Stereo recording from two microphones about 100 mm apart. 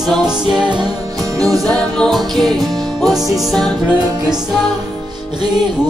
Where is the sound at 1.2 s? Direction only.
35° right (ahead or behind).